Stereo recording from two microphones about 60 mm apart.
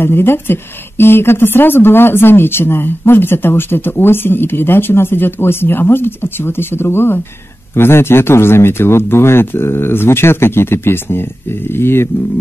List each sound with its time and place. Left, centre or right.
0.0 s a woman's voice: left